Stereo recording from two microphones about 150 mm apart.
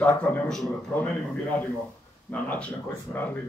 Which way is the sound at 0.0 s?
10° left (ahead or behind).